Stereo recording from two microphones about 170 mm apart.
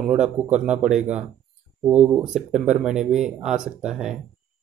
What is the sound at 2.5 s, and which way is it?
Speech, 45° right (ahead or behind).